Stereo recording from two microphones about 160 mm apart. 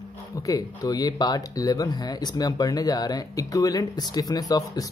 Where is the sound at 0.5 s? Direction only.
25° left (ahead or behind).